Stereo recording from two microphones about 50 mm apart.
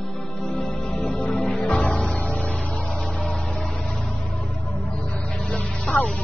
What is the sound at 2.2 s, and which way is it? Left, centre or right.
Music, left.